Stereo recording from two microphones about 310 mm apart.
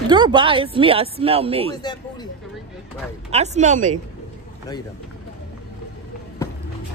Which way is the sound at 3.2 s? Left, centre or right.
Right.